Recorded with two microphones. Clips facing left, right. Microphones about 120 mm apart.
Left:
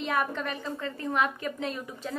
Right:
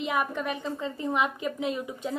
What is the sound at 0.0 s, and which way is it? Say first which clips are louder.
A woman's voice: right 1 dB; 10° right (ahead or behind).